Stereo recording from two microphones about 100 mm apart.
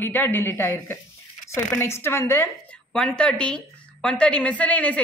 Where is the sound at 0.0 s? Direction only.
20° left (ahead or behind).